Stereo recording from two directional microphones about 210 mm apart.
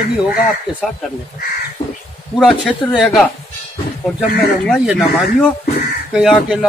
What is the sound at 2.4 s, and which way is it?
Speech, centre (ahead or behind).